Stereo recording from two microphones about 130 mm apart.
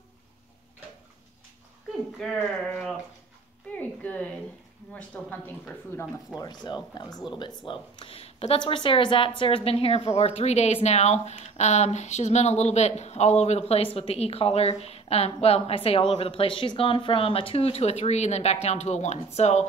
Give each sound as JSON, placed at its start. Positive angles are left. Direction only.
{"t": 2.1, "sound": "speech", "side_deg": 0}
{"t": 3.7, "sound": "a sound", "side_deg": 10}
{"t": 4.9, "sound": "speech", "side_deg": 10}
{"t": 6.3, "sound": "a woman's voice", "side_deg": 30}